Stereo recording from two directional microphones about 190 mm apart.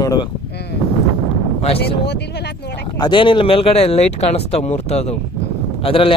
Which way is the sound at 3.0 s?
25° left (ahead or behind).